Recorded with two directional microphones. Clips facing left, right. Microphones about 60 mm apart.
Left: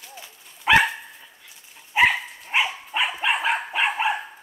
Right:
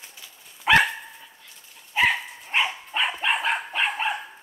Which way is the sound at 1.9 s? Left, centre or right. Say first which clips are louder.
Left 3 dB; centre.